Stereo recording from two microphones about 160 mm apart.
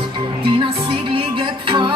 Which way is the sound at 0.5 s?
35° right (ahead or behind).